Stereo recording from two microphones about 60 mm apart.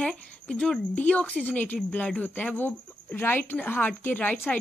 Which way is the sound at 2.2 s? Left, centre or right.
Left.